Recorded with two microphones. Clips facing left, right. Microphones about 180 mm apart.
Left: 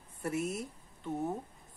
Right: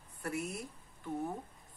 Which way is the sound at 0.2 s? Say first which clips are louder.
Left 4 dB; 20° left (ahead or behind).